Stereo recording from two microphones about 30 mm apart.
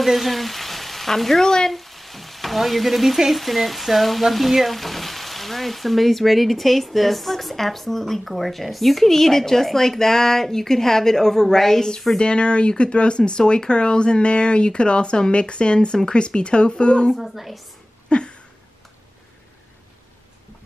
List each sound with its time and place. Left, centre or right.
0.0 s frying: centre
1.7 s frying: centre
12.2 s speech: left
17.1 s frying: centre
18.1 s speech: left